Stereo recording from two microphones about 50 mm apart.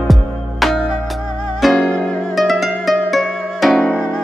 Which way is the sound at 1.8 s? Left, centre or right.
Centre.